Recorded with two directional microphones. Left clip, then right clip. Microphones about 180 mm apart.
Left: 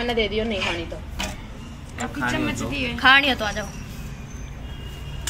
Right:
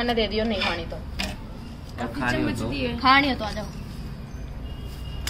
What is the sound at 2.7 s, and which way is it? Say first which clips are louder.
Speech: left 2 dB; 50° right (ahead or behind).